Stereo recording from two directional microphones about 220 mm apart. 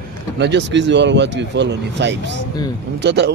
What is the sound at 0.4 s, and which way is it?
A man's voice, 50° right (ahead or behind).